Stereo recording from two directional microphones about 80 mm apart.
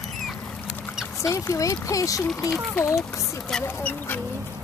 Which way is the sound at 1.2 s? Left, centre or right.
Left.